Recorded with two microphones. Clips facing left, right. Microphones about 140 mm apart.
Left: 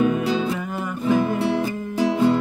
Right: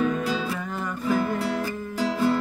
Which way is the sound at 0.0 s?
15° left (ahead or behind).